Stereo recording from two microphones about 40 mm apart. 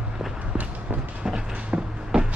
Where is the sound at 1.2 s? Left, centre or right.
Centre.